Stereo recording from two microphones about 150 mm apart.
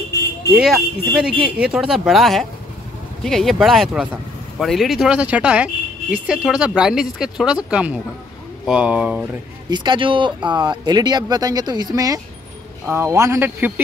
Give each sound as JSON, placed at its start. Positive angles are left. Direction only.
{"t": 0.5, "sound": "speech", "side_deg": 0}
{"t": 9.7, "sound": "speech", "side_deg": -30}